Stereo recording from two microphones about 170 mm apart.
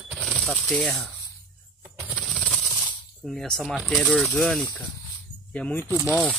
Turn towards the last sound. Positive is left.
turn(degrees=-10)  # may be behind; listen again after turning